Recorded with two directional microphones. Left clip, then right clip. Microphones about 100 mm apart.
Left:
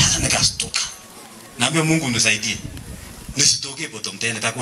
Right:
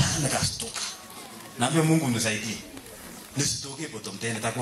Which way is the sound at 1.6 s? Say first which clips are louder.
Left 5 dB; 15° left (ahead or behind).